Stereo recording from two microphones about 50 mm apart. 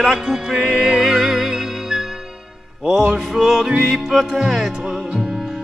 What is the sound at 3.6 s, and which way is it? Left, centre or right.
Speech, centre.